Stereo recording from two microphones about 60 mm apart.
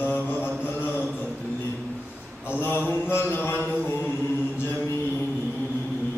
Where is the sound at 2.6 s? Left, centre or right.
Left.